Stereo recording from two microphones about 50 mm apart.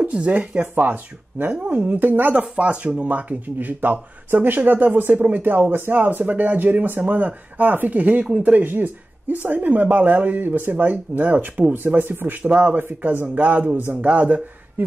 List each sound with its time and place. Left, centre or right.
0.1 s speech: right
0.6 s speech: right
2.3 s speech: right
8.6 s speech: right
12.0 s speech: right
12.4 s speech: right
12.7 s speech: right